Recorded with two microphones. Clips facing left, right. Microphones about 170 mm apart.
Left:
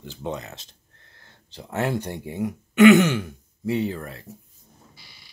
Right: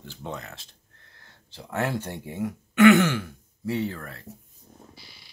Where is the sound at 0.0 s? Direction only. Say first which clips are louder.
Left 5 dB; 20° left (ahead or behind).